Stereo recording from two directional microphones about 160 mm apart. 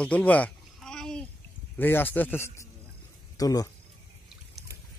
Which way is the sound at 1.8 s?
10° left (ahead or behind).